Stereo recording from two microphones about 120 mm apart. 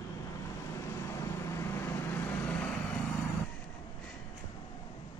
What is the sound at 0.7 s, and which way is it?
Vehicle, 25° left (ahead or behind).